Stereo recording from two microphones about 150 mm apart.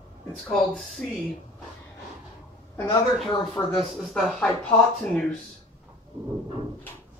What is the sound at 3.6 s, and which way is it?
Speech, 20° left (ahead or behind).